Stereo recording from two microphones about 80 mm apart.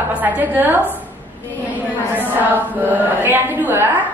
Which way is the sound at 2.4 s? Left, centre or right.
Right.